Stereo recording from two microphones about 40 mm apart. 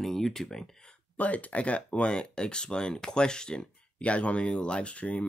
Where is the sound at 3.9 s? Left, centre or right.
Left.